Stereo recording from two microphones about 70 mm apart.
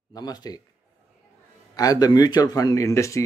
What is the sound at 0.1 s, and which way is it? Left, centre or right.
Speech, left.